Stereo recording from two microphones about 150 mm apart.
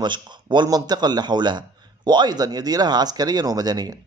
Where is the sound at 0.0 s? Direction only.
30° right (ahead or behind).